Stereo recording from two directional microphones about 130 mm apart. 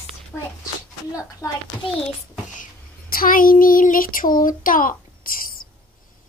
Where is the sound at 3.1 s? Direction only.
90° left.